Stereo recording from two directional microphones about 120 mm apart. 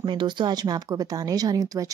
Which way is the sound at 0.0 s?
40° right (ahead or behind).